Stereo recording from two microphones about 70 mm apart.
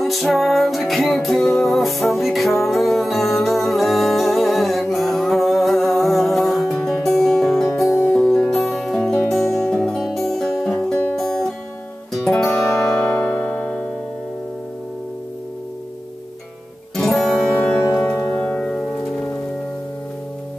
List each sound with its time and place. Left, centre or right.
0.0 s music: centre
16.9 s guitar: centre
18.2 s music: centre